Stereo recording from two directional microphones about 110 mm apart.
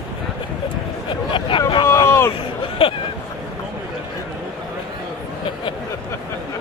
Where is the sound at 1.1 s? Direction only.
50° left (ahead or behind).